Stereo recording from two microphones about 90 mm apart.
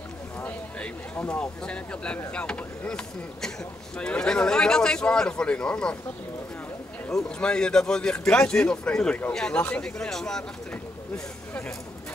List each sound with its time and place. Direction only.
0.4 s a sound: 15° left (ahead or behind)
1.1 s a man's voice: 15° left (ahead or behind)
7.1 s a man's voice: 10° left (ahead or behind)